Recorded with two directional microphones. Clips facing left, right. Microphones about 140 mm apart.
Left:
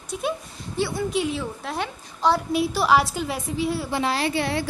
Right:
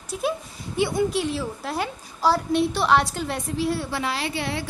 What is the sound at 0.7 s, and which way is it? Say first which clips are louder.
Speech: right 3 dB; 20° right (ahead or behind).